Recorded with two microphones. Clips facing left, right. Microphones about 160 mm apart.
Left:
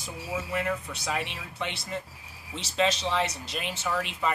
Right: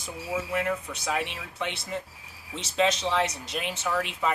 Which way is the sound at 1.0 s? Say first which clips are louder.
Right 2 dB; centre (ahead or behind).